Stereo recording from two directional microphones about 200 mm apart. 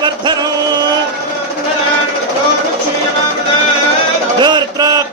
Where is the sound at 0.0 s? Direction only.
20° right (ahead or behind).